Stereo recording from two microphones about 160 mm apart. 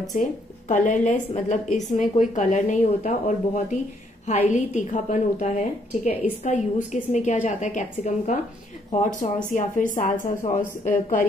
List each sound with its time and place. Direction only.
0.1 s a woman's voice: 55° left (ahead or behind)